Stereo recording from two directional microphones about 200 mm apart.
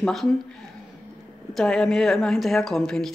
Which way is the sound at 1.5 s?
5° left (ahead or behind).